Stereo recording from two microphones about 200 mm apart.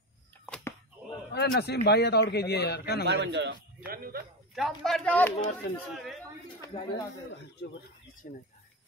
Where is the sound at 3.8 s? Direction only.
50° right (ahead or behind).